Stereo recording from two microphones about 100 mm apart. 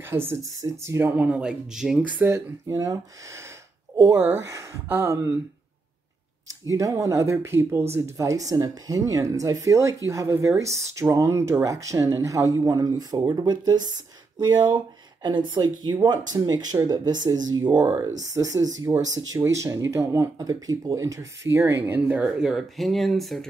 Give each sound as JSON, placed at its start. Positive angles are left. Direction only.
{"t": 0.1, "sound": "speech", "side_deg": -25}
{"t": 0.6, "sound": "speech", "side_deg": -35}
{"t": 0.9, "sound": "speech", "side_deg": -25}
{"t": 1.2, "sound": "speech", "side_deg": -10}
{"t": 2.3, "sound": "speech", "side_deg": -35}
{"t": 4.8, "sound": "speech", "side_deg": -25}
{"t": 6.7, "sound": "speech", "side_deg": -35}
{"t": 17.8, "sound": "speech", "side_deg": -20}
{"t": 18.2, "sound": "speech", "side_deg": -35}
{"t": 22.2, "sound": "speech", "side_deg": -5}